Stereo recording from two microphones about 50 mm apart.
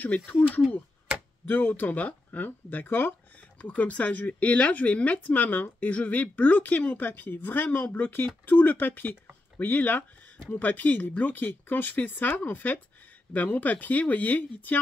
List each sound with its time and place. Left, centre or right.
0.0 s speech: left
1.5 s speech: left
3.6 s speech: left
6.8 s speech: left
7.1 s speech: left